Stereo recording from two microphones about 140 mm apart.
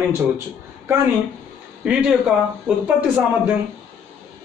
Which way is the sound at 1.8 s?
5° right (ahead or behind).